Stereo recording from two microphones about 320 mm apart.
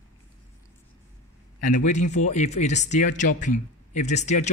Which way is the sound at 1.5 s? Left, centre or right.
Left.